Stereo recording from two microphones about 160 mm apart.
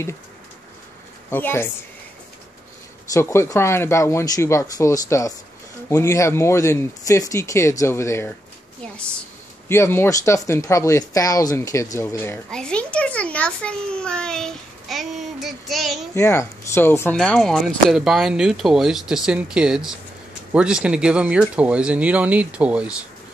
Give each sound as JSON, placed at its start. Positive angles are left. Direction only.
{"t": 1.3, "sound": "speech", "side_deg": 15}
{"t": 3.1, "sound": "speech", "side_deg": 20}
{"t": 9.7, "sound": "speech", "side_deg": 15}
{"t": 12.4, "sound": "a child's voice", "side_deg": 5}
{"t": 16.2, "sound": "speech", "side_deg": 15}
{"t": 17.2, "sound": "a child's voice", "side_deg": 0}